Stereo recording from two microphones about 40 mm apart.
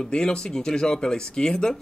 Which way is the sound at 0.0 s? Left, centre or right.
Centre.